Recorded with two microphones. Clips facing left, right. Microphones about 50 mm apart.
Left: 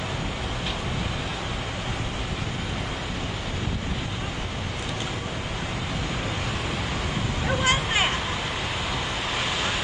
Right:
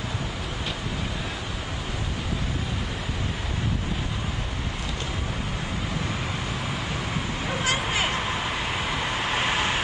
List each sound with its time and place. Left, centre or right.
7.6 s vehicle: left
9.3 s vehicle: right